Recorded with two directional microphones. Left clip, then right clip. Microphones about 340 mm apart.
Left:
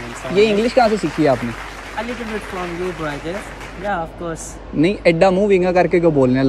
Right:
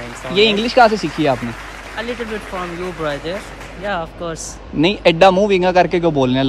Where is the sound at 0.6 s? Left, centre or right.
Centre.